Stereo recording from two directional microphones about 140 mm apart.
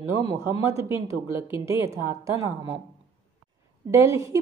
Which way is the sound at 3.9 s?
20° right (ahead or behind).